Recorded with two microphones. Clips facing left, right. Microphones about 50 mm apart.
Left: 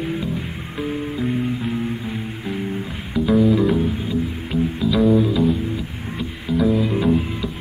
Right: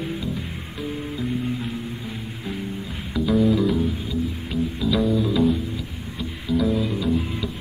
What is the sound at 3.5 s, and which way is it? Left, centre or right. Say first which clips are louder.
Music: left 3 dB; centre.